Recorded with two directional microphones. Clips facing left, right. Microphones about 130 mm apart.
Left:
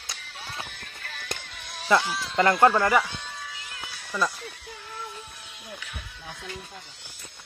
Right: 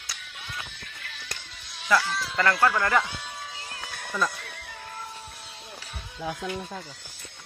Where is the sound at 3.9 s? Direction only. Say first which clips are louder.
Right 5 dB; 50° right (ahead or behind).